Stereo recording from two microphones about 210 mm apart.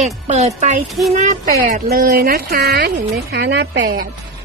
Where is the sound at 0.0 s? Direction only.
30° right (ahead or behind); by 3.8 s 55° right (ahead or behind).